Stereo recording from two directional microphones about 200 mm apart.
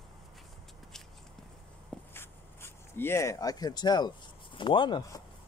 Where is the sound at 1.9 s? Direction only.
10° left (ahead or behind).